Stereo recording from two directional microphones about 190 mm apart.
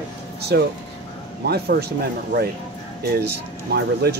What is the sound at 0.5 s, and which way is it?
Speech, 60° right (ahead or behind).